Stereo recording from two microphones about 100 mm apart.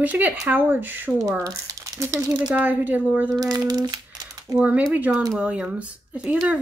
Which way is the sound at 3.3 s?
40° right (ahead or behind).